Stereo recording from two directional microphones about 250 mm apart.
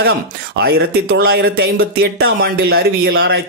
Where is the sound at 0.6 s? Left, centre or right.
Right.